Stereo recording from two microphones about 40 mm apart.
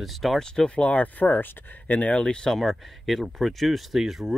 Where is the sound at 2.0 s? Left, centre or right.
Left.